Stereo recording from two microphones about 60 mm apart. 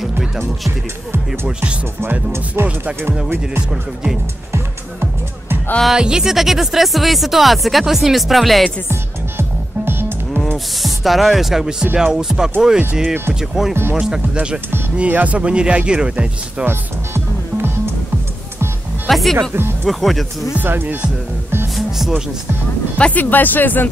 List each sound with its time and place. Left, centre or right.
0.7 s speech: right
2.3 s music: right
5.9 s speech: centre
9.4 s music: right
10.8 s speech: centre
11.9 s music: centre
15.0 s speech: right
16.6 s music: right
19.0 s speech: centre
20.5 s music: right
21.7 s music: centre
22.9 s speech: centre
23.3 s speech: left